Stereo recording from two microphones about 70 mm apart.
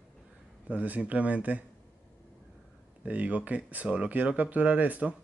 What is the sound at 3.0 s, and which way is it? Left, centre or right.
Speech, centre.